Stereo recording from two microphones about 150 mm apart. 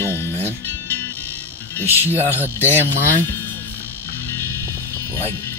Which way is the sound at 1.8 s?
15° right (ahead or behind).